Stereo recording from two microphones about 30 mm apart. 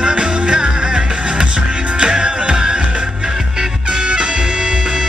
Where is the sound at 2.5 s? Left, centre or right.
Right.